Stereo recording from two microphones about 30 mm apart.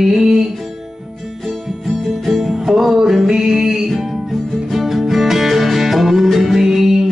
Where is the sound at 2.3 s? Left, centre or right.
Centre.